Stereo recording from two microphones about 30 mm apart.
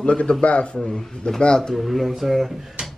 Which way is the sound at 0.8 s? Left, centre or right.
Centre.